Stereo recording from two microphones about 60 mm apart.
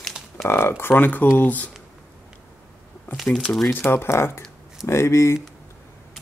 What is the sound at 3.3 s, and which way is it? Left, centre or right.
Speech, centre.